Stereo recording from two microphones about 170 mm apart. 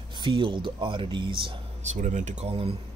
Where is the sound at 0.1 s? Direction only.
30° right (ahead or behind).